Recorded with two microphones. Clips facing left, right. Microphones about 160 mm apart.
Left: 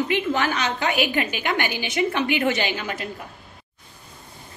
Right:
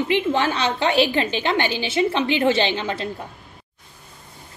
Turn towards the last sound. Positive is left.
turn(degrees=-25)  # may be behind; listen again after turning